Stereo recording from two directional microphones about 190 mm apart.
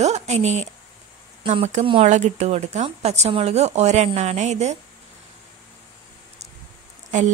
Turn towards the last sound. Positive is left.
turn(degrees=-40)  # may be behind; listen again after turning